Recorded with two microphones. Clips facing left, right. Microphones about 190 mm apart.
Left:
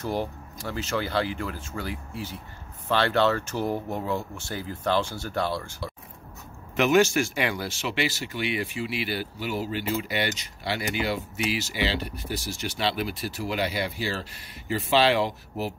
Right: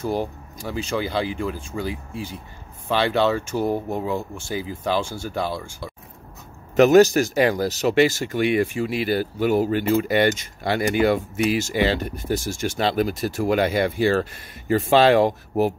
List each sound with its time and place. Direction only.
0.0 s speech: 10° right (ahead or behind)
6.8 s speech: 40° right (ahead or behind)